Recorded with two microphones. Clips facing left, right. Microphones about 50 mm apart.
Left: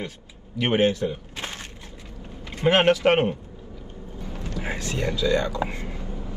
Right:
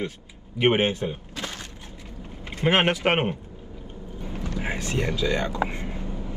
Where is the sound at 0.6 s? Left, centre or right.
Right.